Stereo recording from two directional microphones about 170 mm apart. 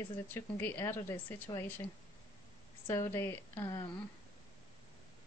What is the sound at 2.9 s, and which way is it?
Speech, 15° left (ahead or behind).